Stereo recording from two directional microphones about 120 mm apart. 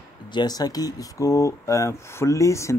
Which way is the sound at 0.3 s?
35° left (ahead or behind).